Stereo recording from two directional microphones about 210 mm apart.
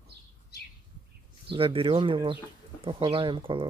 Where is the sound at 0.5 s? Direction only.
50° left (ahead or behind).